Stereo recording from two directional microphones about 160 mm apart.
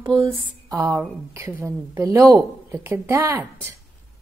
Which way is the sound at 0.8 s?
15° right (ahead or behind).